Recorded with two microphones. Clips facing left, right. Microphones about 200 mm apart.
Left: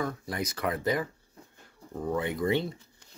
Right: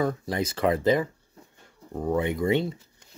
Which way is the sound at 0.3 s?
25° right (ahead or behind).